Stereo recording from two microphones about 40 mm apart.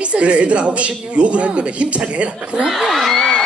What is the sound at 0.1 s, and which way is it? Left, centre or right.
A man's voice, right.